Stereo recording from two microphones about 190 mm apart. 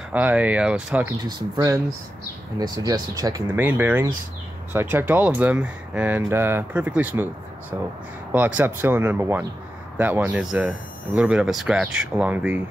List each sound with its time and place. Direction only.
0.1 s speech: 10° right (ahead or behind)
1.2 s speech: 20° right (ahead or behind)
8.3 s speech: 10° right (ahead or behind)